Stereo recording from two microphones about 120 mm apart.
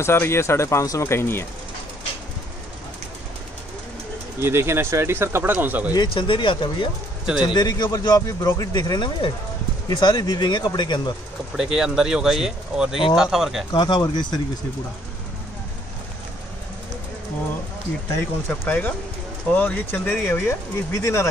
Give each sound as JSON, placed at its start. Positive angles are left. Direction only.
{"t": 0.0, "sound": "speech", "side_deg": 20}
{"t": 4.4, "sound": "speech", "side_deg": -20}
{"t": 6.1, "sound": "speech", "side_deg": 45}
{"t": 11.5, "sound": "speech", "side_deg": -5}
{"t": 13.7, "sound": "speech", "side_deg": 35}
{"t": 18.5, "sound": "speech", "side_deg": 20}